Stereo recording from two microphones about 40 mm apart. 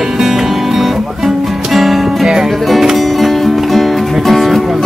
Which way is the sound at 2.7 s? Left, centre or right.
Centre.